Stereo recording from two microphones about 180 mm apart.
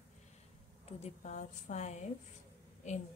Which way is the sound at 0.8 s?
40° left (ahead or behind).